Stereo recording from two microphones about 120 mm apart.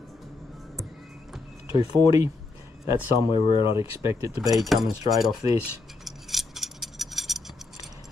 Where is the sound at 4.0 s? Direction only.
25° right (ahead or behind).